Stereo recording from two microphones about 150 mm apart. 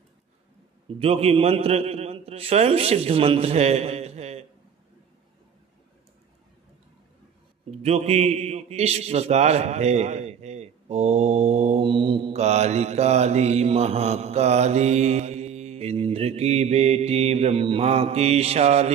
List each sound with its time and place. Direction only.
0.8 s a man's voice: 40° right (ahead or behind)
7.7 s a man's voice: 45° right (ahead or behind)